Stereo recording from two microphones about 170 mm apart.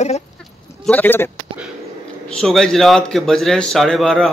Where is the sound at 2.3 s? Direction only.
5° left (ahead or behind).